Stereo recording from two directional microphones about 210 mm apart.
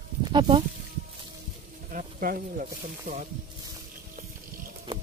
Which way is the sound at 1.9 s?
40° right (ahead or behind).